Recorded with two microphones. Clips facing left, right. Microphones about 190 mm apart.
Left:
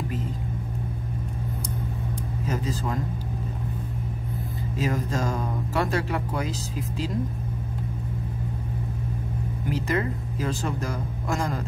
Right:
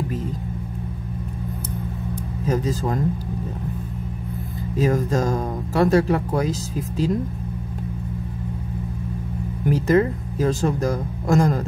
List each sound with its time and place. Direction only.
2.5 s speech: 40° right (ahead or behind)
4.7 s speech: 45° right (ahead or behind)
9.7 s speech: 45° right (ahead or behind)